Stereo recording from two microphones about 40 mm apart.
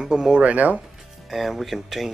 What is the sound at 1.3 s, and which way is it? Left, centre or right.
Speech, centre.